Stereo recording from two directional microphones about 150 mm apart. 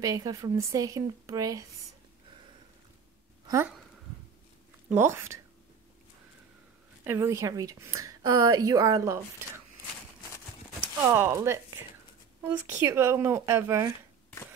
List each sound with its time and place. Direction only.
0.0 s a woman's voice: 25° right (ahead or behind)
3.4 s speech: 15° right (ahead or behind)
4.8 s a woman's voice: 15° right (ahead or behind)
7.1 s a woman's voice: 20° right (ahead or behind)
11.0 s a woman's voice: 15° right (ahead or behind)